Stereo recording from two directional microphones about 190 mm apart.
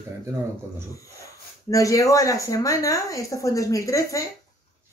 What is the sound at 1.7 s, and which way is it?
Speech, 15° left (ahead or behind).